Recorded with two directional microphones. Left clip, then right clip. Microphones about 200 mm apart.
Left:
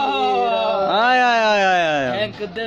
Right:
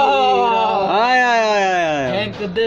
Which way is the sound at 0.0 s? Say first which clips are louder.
Right 5 dB; 15° left (ahead or behind).